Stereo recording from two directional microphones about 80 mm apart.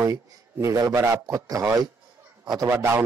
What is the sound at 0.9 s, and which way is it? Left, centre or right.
Speech, right.